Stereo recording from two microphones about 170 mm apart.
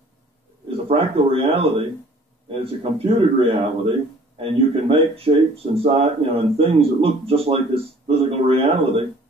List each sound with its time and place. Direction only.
0.7 s speech: 35° right (ahead or behind)